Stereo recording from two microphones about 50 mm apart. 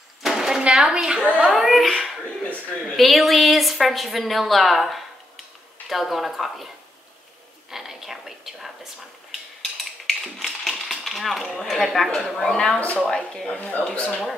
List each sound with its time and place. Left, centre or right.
0.2 s a sound: centre
1.4 s a woman's voice: centre
3.0 s a woman's voice: centre
7.7 s a woman's voice: centre
10.0 s a sound: centre
12.2 s a woman's voice: centre
12.4 s speech: centre
13.6 s speech: left